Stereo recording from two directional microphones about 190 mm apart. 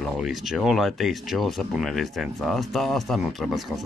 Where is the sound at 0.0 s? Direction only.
Centre (ahead or behind).